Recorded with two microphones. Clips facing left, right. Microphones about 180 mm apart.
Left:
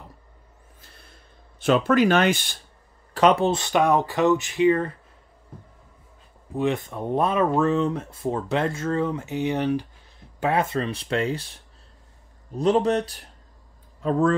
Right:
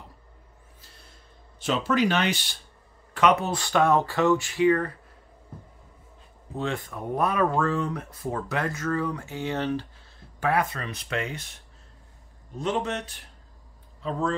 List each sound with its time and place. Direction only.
1.6 s speech: 55° left (ahead or behind)
3.2 s speech: 30° left (ahead or behind)
6.5 s speech: 15° left (ahead or behind)
10.4 s a man's voice: 25° left (ahead or behind)